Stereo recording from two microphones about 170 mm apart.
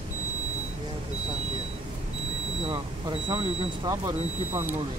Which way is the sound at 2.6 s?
30° right (ahead or behind).